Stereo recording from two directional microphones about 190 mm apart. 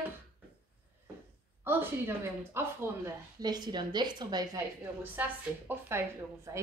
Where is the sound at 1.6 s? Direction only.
10° right (ahead or behind).